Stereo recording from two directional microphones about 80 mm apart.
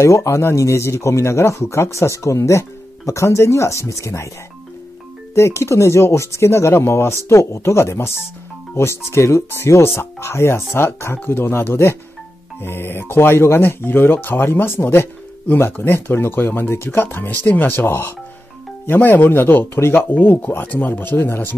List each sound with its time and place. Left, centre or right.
0.0 s speech: left
5.3 s speech: left